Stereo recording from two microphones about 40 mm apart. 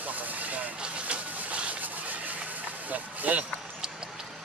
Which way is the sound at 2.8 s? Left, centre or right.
Right.